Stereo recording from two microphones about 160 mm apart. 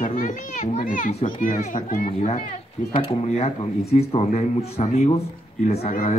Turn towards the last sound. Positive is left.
turn(degrees=40)  # may be behind; listen again after turning